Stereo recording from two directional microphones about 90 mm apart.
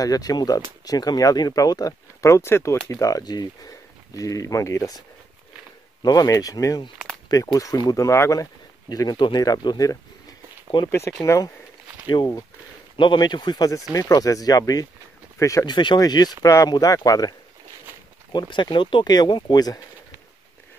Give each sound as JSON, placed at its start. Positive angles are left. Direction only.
{"t": 0.0, "sound": "speech", "side_deg": 45}
{"t": 6.0, "sound": "speech", "side_deg": 40}
{"t": 10.9, "sound": "speech", "side_deg": 30}
{"t": 12.9, "sound": "speech", "side_deg": 60}
{"t": 15.6, "sound": "speech", "side_deg": 55}
{"t": 18.3, "sound": "speech", "side_deg": 60}
{"t": 19.0, "sound": "speech", "side_deg": 55}
{"t": 19.4, "sound": "speech", "side_deg": 45}